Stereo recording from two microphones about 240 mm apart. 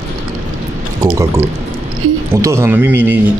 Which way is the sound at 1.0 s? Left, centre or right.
Centre.